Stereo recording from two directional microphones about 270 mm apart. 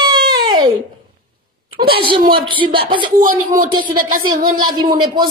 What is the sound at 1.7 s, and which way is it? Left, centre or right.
A woman's voice, centre.